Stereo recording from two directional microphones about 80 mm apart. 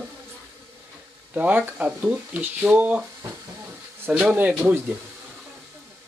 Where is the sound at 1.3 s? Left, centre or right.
Right.